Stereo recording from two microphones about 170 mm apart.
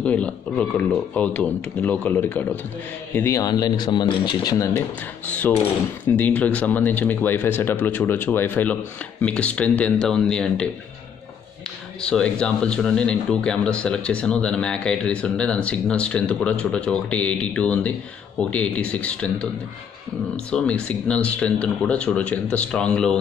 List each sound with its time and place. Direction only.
0.0 s speech: 5° left (ahead or behind)
6.0 s speech: 10° left (ahead or behind)
12.0 s speech: 5° left (ahead or behind)
20.5 s speech: 5° left (ahead or behind)